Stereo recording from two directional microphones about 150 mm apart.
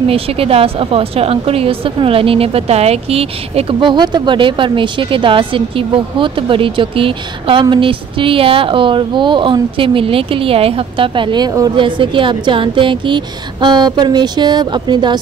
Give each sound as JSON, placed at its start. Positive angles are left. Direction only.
{"t": 0.1, "sound": "speech", "side_deg": -40}